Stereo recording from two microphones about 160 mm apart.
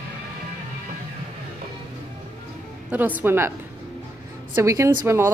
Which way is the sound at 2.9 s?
10° right (ahead or behind).